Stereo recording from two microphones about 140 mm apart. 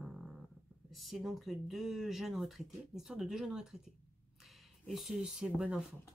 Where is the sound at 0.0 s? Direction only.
Centre (ahead or behind).